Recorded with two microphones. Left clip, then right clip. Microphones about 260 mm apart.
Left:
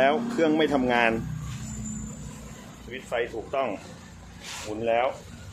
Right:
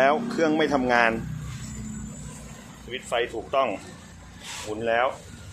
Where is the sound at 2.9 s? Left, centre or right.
Centre.